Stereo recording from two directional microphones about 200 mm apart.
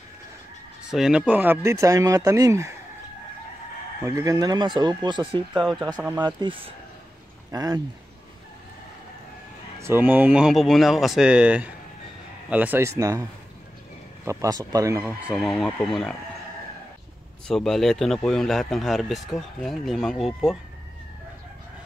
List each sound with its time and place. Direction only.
0.8 s speech: 5° right (ahead or behind)
4.0 s speech: 15° right (ahead or behind)
9.8 s speech: 10° right (ahead or behind)
14.2 s speech: 15° right (ahead or behind)
15.3 s speech: centre (ahead or behind)
17.5 s speech: centre (ahead or behind)